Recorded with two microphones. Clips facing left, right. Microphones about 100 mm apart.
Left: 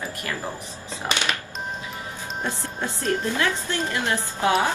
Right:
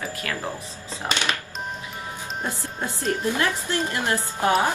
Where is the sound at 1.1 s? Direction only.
15° left (ahead or behind).